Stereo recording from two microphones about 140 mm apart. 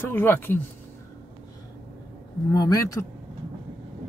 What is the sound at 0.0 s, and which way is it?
Speech, 15° left (ahead or behind).